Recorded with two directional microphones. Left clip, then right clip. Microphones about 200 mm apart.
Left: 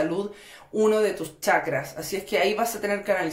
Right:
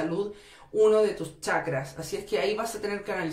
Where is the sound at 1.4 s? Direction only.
40° left (ahead or behind).